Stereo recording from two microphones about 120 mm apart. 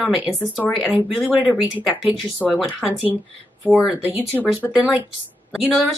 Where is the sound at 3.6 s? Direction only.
10° right (ahead or behind).